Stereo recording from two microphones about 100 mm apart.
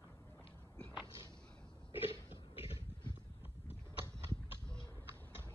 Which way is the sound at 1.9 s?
65° left (ahead or behind).